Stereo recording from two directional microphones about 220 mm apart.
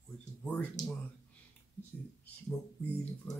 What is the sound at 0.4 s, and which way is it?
Speech, 5° left (ahead or behind).